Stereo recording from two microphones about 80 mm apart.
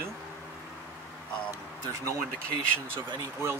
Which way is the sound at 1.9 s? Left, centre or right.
Right.